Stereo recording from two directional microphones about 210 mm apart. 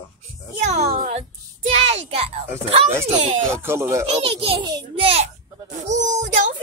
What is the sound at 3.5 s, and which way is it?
Speech, 10° right (ahead or behind).